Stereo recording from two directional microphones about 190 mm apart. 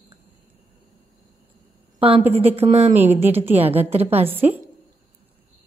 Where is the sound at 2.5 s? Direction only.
35° right (ahead or behind).